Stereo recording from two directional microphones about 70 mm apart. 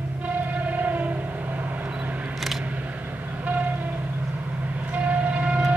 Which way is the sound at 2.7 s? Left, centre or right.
Right.